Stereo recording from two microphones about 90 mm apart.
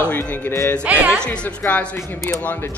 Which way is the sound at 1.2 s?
10° left (ahead or behind).